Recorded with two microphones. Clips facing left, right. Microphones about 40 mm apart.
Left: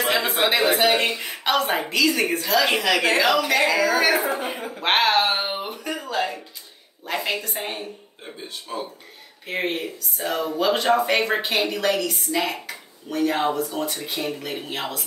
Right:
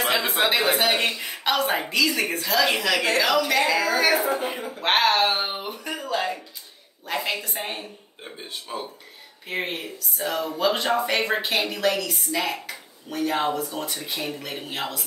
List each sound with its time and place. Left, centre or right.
0.0 s a woman's voice: centre
4.6 s speech: left
4.8 s a woman's voice: centre
9.5 s a woman's voice: centre
12.6 s finger snapping: centre
13.6 s a woman's voice: centre